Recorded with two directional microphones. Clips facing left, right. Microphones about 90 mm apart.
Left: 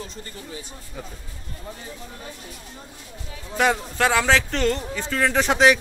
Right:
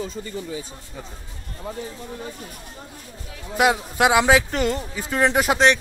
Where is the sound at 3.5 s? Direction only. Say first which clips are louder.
Right 2 dB; 10° right (ahead or behind).